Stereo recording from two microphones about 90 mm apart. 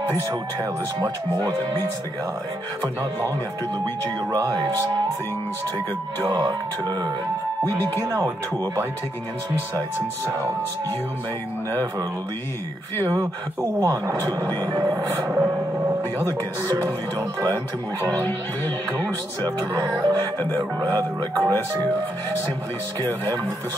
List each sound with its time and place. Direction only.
4.3 s speech: 45° right (ahead or behind)
6.2 s speech: 45° right (ahead or behind)
13.1 s speech: 40° right (ahead or behind)
15.0 s speech: 25° right (ahead or behind)
19.8 s speech: 60° right (ahead or behind)
20.5 s speech: 40° right (ahead or behind)